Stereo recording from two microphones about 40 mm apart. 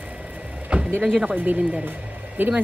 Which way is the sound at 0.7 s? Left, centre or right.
Right.